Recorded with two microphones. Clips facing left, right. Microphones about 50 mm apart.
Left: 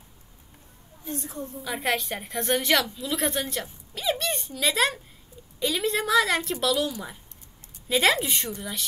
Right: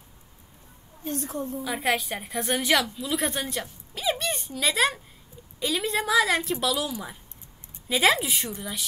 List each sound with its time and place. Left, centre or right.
1.0 s a woman's voice: right
1.6 s a woman's voice: centre
3.9 s a sound: centre
5.6 s a woman's voice: centre